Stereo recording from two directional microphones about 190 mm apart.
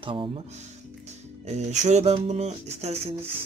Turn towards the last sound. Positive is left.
turn(degrees=-35)  # may be behind; listen again after turning